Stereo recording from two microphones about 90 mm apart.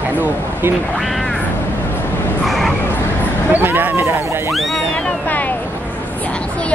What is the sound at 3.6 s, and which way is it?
Speech, 20° right (ahead or behind).